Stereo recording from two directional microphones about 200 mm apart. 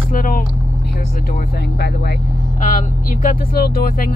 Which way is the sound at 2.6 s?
40° left (ahead or behind).